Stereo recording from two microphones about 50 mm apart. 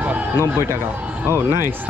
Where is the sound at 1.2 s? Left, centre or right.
Right.